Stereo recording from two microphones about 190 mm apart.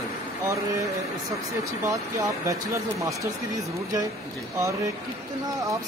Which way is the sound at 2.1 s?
15° right (ahead or behind).